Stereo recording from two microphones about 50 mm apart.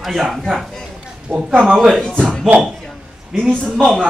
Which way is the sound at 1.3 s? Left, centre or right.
Right.